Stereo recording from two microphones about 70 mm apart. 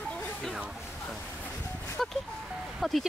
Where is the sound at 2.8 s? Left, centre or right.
Centre.